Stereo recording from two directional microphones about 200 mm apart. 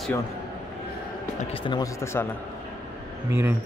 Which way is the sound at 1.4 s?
25° left (ahead or behind).